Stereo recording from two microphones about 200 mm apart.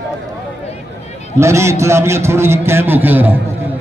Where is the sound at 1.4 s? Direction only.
15° right (ahead or behind).